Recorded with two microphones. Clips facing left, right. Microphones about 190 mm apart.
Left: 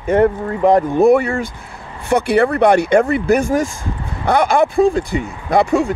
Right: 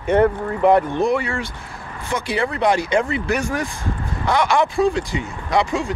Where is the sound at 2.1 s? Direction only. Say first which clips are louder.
Left 9 dB; 65° left (ahead or behind).